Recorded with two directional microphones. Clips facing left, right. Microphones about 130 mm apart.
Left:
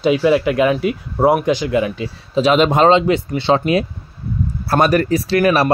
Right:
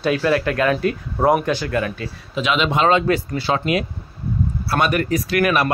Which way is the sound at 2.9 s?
20° left (ahead or behind).